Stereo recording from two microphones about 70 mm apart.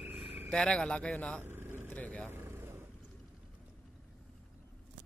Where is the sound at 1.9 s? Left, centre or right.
Left.